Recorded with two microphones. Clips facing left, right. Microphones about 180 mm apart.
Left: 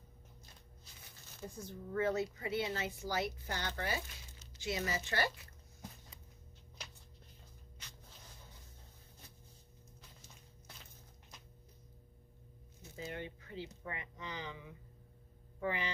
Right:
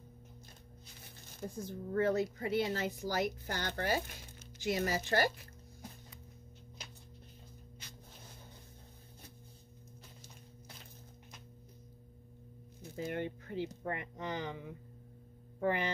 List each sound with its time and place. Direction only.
1.0 s speech: 50° right (ahead or behind)
12.9 s speech: 55° right (ahead or behind)